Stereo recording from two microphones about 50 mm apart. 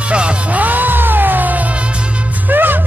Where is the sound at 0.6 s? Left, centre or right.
Right.